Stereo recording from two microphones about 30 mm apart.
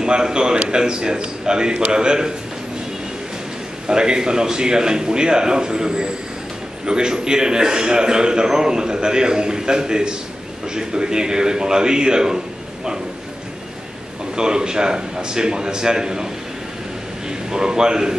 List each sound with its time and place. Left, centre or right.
0.0 s a man's voice: right
3.8 s a man's voice: right
14.3 s a man's voice: right
17.5 s a man's voice: right